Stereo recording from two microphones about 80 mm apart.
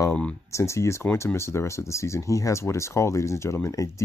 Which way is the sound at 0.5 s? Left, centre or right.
Left.